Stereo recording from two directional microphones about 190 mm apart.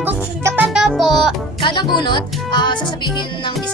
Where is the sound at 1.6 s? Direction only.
25° left (ahead or behind).